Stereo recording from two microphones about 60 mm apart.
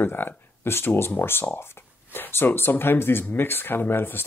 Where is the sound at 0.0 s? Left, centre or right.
Left.